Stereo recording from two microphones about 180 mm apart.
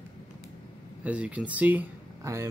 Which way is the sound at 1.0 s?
5° right (ahead or behind).